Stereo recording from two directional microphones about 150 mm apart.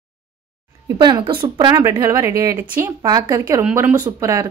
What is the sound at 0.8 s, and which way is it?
Speech, 30° right (ahead or behind).